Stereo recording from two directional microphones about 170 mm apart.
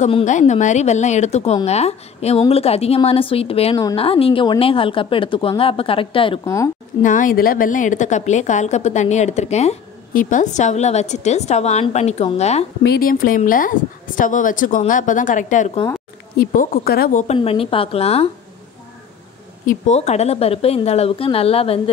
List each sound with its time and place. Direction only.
0.2 s a woman's voice: 45° left (ahead or behind)
6.4 s a woman's voice: 20° left (ahead or behind)
7.0 s a woman's voice: 50° left (ahead or behind)
12.8 s a woman's voice: 65° left (ahead or behind); by 15.8 s 45° left (ahead or behind)
16.3 s speech: 60° left (ahead or behind)
17.4 s a woman's voice: 35° left (ahead or behind)
19.7 s a woman's voice: 40° left (ahead or behind)